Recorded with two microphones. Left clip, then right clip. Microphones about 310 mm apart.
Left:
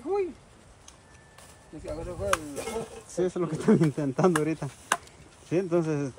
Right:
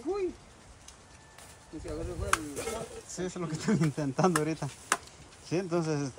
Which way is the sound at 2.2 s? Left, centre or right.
Centre.